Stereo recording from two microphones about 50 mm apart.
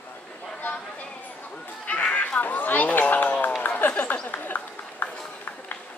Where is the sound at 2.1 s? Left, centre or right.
Left.